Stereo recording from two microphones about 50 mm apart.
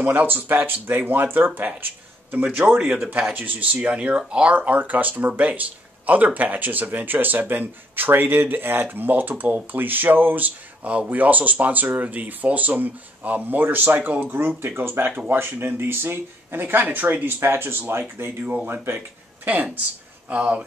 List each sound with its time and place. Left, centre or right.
0.0 s speech: right
4.6 s speech: right
13.9 s speech: right
14.3 s speech: right
17.4 s speech: right
19.4 s speech: right